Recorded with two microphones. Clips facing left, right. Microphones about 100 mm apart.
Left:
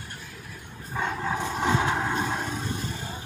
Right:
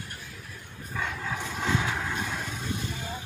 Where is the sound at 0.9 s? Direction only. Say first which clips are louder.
Left 5 dB; 35° left (ahead or behind).